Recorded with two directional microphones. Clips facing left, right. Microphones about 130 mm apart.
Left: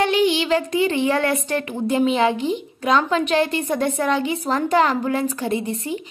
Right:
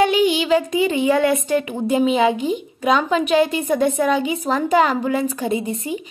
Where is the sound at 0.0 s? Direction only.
15° right (ahead or behind).